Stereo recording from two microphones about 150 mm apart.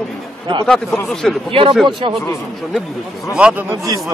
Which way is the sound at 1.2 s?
Centre (ahead or behind).